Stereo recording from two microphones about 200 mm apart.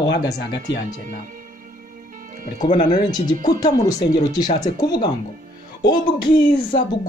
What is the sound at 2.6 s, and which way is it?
Speech, 25° left (ahead or behind).